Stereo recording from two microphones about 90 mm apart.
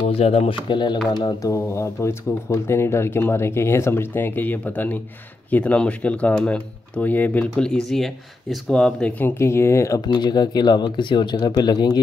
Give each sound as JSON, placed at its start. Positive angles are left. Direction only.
{"t": 0.1, "sound": "speech", "side_deg": 70}
{"t": 1.4, "sound": "speech", "side_deg": 35}
{"t": 7.5, "sound": "speech", "side_deg": 5}
{"t": 9.2, "sound": "speech", "side_deg": 30}
{"t": 10.0, "sound": "speech", "side_deg": 50}